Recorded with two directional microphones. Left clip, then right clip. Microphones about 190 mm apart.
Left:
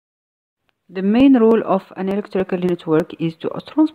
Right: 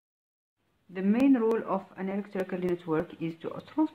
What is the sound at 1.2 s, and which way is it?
Speech, 45° left (ahead or behind).